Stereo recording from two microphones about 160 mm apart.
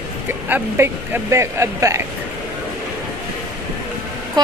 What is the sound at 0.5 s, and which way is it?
Speech, 15° right (ahead or behind).